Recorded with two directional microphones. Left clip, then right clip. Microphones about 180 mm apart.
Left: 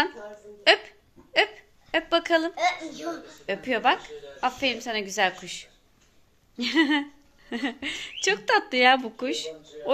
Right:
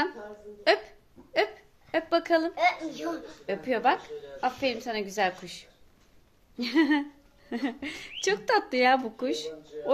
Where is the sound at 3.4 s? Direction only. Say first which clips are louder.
Left 2 dB; 5° left (ahead or behind).